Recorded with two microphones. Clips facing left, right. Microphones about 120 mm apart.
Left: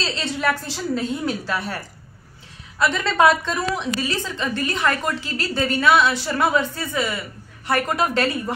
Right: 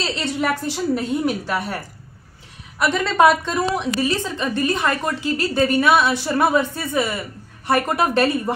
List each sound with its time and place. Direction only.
0.0 s a woman's voice: 20° right (ahead or behind)
2.8 s a woman's voice: 15° right (ahead or behind)